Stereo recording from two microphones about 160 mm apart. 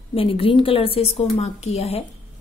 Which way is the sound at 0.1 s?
35° left (ahead or behind).